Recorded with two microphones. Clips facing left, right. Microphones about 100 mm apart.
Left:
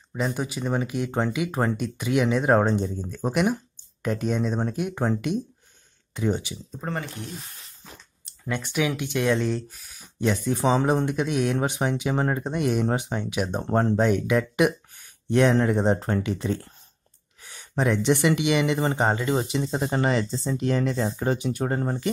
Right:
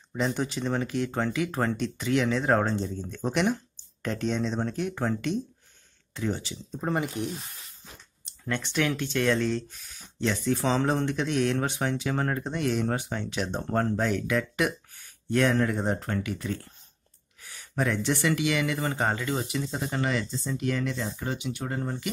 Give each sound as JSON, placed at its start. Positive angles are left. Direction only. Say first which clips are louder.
{"t": 0.1, "sound": "speech", "louder": "left 1 dB", "side_deg": 10}
{"t": 6.8, "sound": "speech", "louder": "right 4 dB", "side_deg": -15}
{"t": 8.5, "sound": "speech", "louder": "left 2 dB", "side_deg": 10}